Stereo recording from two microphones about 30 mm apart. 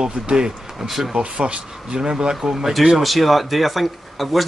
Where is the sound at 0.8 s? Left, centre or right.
Centre.